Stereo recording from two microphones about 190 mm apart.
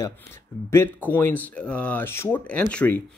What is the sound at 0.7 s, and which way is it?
Speech, 10° left (ahead or behind).